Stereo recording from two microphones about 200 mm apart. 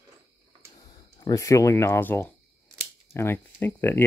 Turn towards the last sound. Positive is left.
turn(degrees=10)  # may be behind; listen again after turning